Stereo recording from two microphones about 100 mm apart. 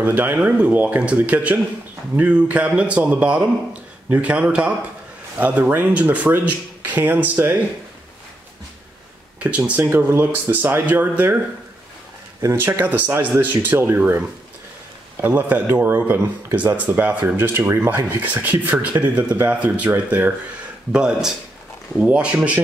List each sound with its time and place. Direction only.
0.0 s speech: 20° right (ahead or behind)
9.4 s speech: 15° right (ahead or behind)
9.8 s speech: 25° right (ahead or behind)
12.5 s speech: 20° right (ahead or behind)